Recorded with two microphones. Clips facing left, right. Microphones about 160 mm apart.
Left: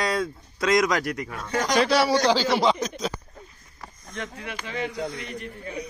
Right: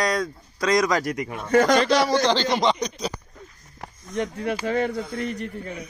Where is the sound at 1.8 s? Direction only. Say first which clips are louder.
Right 1 dB; 5° left (ahead or behind).